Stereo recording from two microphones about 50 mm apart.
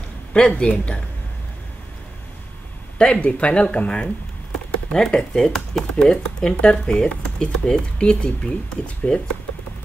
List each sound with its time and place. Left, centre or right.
0.3 s speech: left
3.0 s speech: left
4.9 s speech: centre